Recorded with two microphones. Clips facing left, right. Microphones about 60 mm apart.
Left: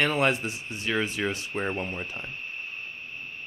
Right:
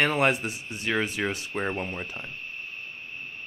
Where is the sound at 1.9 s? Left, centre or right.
Centre.